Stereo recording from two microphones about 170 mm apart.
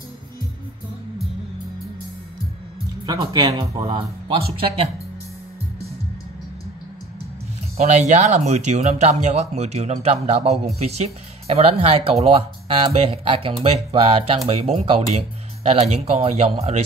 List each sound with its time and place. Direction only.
3.1 s speech: 20° right (ahead or behind)
3.8 s speech: 30° right (ahead or behind)
7.7 s speech: 40° right (ahead or behind)